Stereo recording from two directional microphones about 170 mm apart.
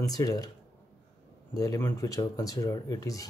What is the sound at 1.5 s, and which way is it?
Speech, 20° left (ahead or behind).